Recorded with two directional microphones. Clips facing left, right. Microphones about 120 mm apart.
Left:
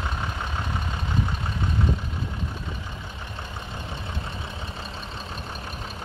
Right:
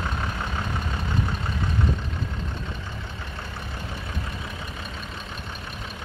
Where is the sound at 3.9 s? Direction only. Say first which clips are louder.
Even; 25° left (ahead or behind).